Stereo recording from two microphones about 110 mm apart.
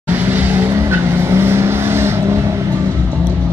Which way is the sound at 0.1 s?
20° right (ahead or behind).